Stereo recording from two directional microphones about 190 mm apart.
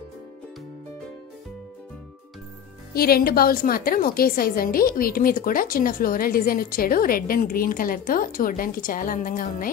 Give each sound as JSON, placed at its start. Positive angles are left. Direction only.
{"t": 2.9, "sound": "a woman's voice", "side_deg": 50}